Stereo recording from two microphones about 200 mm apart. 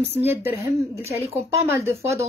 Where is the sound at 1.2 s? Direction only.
30° right (ahead or behind).